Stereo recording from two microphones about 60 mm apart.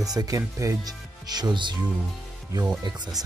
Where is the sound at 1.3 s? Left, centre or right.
Right.